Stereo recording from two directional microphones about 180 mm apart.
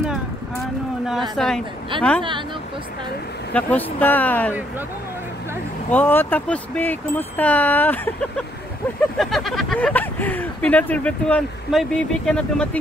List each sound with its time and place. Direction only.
1.3 s speech: centre (ahead or behind)
1.9 s speech: 25° right (ahead or behind)
3.5 s speech: 10° left (ahead or behind)
5.9 s speech: 10° left (ahead or behind)
9.2 s speech: centre (ahead or behind)